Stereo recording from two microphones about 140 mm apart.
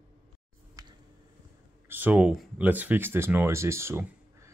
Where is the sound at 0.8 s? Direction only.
25° right (ahead or behind).